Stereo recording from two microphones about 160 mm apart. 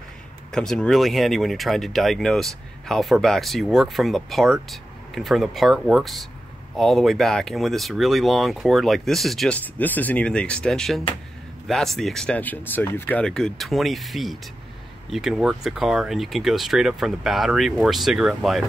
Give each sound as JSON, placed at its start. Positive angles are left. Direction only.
{"t": 0.5, "sound": "speech", "side_deg": 5}